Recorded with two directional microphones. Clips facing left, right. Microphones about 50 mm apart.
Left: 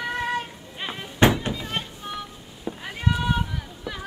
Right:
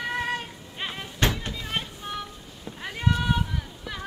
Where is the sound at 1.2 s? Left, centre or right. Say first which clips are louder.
Left 7 dB; centre.